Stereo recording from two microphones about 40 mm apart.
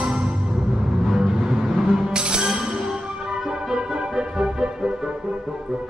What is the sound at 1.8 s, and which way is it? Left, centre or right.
Music, centre.